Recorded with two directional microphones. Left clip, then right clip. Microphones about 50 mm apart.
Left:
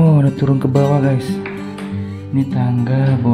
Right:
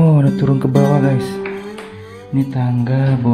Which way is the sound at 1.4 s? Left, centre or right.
Right.